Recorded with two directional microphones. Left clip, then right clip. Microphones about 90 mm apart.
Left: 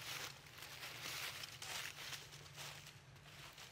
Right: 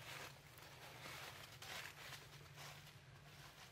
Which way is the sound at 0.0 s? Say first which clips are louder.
Left 5 dB; 55° left (ahead or behind).